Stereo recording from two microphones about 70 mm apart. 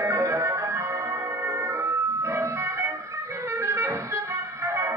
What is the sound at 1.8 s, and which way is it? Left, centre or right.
Emergency vehicle, right.